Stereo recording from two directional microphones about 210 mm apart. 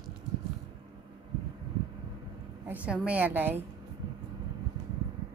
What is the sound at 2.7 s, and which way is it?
Speech, 5° right (ahead or behind).